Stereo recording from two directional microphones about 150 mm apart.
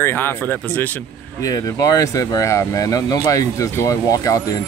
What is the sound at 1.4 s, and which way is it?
Speech, 25° left (ahead or behind).